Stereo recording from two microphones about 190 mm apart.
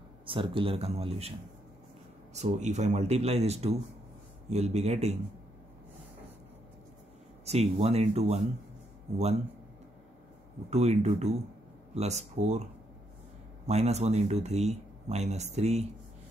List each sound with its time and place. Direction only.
0.2 s speech: 25° right (ahead or behind)
2.3 s speech: 40° right (ahead or behind)
7.4 s speech: 35° right (ahead or behind)
10.7 s speech: 35° right (ahead or behind)
13.7 s speech: 35° right (ahead or behind)